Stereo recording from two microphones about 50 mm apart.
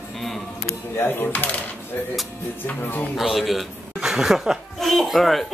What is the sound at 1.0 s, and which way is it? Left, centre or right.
Coin, left.